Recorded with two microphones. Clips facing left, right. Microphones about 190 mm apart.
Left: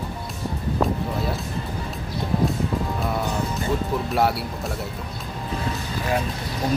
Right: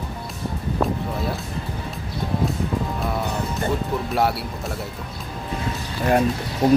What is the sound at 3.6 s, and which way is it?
Music, centre (ahead or behind).